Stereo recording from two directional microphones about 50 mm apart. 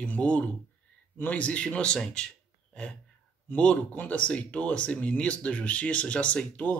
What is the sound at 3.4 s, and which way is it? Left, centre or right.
Speech, left.